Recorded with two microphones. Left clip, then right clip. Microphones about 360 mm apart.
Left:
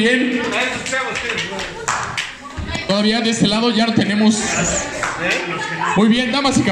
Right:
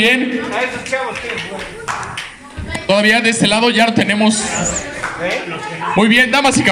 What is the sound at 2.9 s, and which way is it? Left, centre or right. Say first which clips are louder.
A man's voice: right 6 dB; right.